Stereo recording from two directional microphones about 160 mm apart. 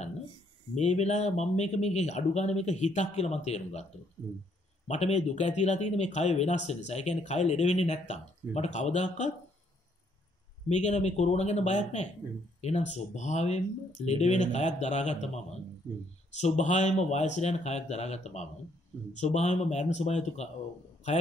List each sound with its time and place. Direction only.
0.7 s speech: 45° left (ahead or behind)
4.8 s speech: 45° left (ahead or behind)
10.7 s speech: 45° left (ahead or behind)